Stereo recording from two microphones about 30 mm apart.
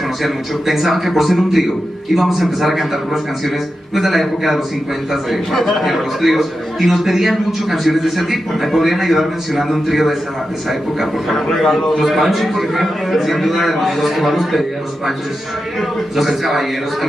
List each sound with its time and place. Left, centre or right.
0.2 s a man's voice: centre
11.3 s a man's voice: centre
12.0 s a man's voice: centre
16.2 s a man's voice: centre